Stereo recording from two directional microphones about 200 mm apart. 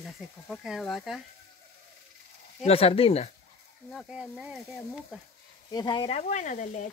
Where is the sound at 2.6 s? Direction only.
30° left (ahead or behind).